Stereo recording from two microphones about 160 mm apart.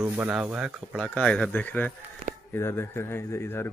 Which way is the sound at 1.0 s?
5° left (ahead or behind).